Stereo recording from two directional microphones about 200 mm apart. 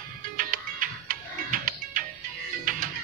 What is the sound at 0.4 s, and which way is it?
Music, 45° right (ahead or behind).